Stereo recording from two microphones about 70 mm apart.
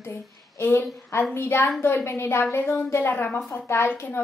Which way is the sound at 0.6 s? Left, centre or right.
Left.